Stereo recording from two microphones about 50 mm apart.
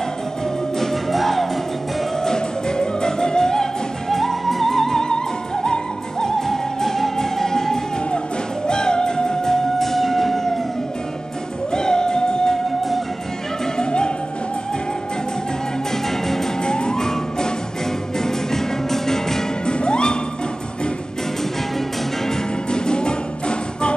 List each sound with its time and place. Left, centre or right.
0.7 s music: centre
11.7 s music: centre
13.7 s music: centre
16.1 s music: centre
22.3 s music: centre